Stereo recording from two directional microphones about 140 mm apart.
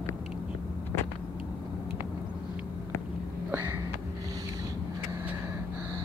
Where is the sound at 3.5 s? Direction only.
15° right (ahead or behind).